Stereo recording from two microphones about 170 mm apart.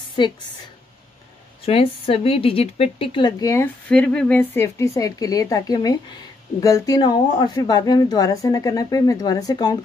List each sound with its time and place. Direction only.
0.2 s speech: 25° left (ahead or behind)
1.7 s speech: 35° left (ahead or behind)